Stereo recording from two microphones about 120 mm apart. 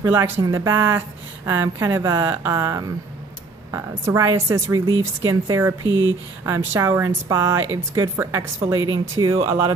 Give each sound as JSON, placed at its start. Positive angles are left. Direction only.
{"t": 0.0, "sound": "speech", "side_deg": -20}